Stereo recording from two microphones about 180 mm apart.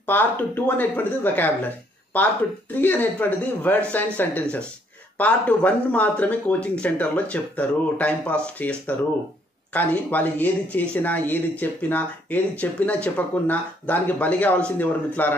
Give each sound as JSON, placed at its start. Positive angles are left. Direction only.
{"t": 0.0, "sound": "speech", "side_deg": 10}